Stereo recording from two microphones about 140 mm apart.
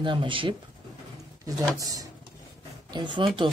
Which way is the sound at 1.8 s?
25° right (ahead or behind).